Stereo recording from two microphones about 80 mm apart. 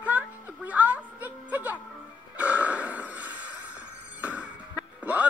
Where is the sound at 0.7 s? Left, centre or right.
Centre.